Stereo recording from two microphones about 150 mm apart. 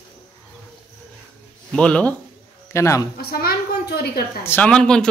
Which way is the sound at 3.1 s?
90° left.